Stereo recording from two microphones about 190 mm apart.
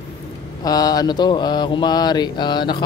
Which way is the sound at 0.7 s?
20° left (ahead or behind).